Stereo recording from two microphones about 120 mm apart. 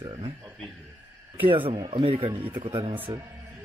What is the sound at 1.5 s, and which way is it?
Speech, 45° right (ahead or behind).